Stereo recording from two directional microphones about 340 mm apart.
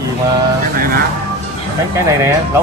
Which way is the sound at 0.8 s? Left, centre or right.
Right.